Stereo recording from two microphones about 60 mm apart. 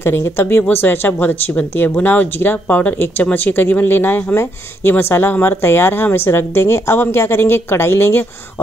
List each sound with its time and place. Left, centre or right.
0.0 s speech: left